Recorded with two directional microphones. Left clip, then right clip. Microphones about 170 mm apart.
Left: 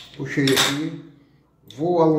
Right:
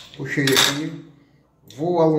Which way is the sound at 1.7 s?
15° right (ahead or behind).